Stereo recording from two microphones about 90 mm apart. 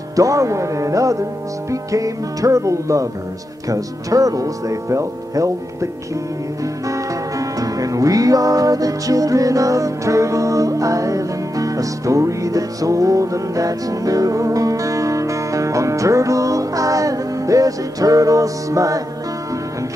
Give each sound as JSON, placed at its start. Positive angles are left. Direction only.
{"t": 0.1, "sound": "speech", "side_deg": -40}
{"t": 6.9, "sound": "music", "side_deg": -40}